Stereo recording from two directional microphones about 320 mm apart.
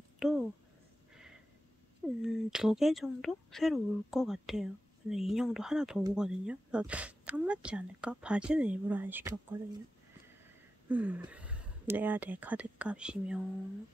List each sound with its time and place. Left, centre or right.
0.2 s speech: centre
2.2 s speech: centre
10.9 s speech: centre